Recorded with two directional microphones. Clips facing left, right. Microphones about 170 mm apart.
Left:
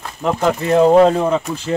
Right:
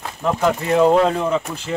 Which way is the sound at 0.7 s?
40° left (ahead or behind).